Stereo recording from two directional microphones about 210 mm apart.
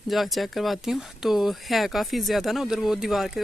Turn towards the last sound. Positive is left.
turn(degrees=0)  # may be behind; listen again after turning